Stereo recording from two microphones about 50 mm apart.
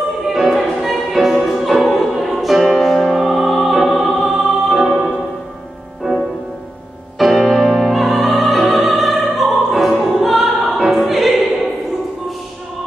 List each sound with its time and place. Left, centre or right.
0.3 s music: centre
6.0 s music: centre
7.2 s music: centre
7.8 s opera: centre
9.9 s music: centre